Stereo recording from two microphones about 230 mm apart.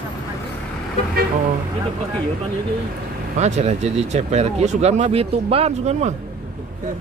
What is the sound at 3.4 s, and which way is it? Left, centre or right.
Speech, right.